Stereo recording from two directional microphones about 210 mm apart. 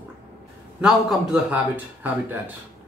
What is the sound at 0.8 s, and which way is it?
Speech, centre (ahead or behind).